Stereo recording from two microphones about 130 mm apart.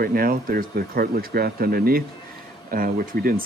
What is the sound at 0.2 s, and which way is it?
Speech, 90° right.